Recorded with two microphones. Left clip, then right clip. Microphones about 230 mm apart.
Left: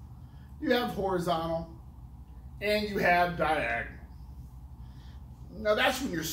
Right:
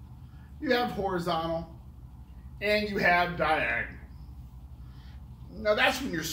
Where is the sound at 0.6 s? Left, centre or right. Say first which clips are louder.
Right 1 dB; centre.